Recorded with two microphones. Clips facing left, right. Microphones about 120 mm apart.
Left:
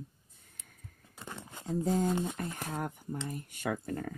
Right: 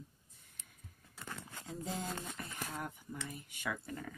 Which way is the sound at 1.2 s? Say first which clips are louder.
Left 3 dB; 20° left (ahead or behind).